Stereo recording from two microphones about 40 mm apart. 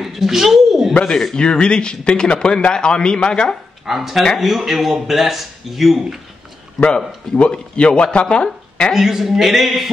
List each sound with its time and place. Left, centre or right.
0.0 s a sound: centre
1.0 s speech: centre
1.4 s speech: left
3.8 s speech: centre
7.3 s speech: left
8.9 s speech: centre